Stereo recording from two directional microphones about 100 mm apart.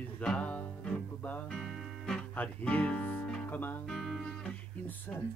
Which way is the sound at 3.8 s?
Centre (ahead or behind).